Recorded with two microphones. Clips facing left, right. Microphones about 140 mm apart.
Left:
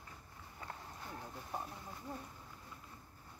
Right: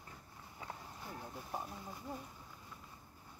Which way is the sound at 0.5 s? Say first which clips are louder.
Even; 5° right (ahead or behind).